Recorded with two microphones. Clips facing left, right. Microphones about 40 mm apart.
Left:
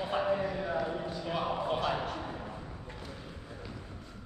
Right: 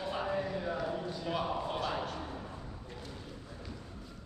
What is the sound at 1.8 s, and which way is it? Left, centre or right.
Speech, centre.